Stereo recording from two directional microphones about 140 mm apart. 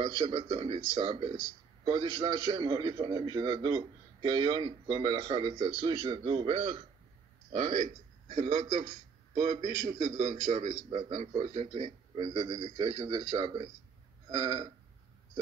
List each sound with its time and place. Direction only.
0.0 s a man's voice: 45° right (ahead or behind)
7.5 s a man's voice: 60° right (ahead or behind); by 14.7 s 30° right (ahead or behind)